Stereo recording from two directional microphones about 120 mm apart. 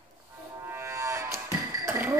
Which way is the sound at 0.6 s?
20° right (ahead or behind).